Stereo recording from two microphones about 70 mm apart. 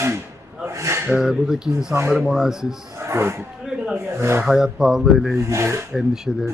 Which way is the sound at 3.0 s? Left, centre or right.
Right.